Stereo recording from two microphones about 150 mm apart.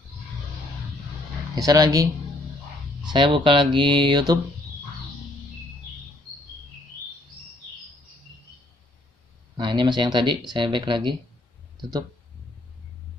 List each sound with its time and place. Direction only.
1.5 s speech: 25° right (ahead or behind)
3.1 s speech: 30° right (ahead or behind)
9.6 s speech: 30° right (ahead or behind)